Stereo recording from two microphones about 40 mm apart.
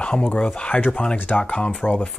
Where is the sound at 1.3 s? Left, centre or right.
Left.